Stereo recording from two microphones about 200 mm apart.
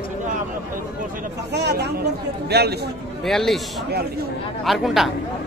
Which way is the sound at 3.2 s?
Centre (ahead or behind).